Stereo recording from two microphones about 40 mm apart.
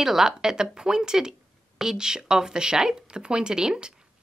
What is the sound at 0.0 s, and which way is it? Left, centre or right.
A woman's voice, centre.